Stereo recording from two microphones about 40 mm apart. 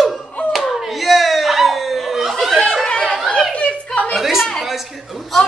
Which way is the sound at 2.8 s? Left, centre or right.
Centre.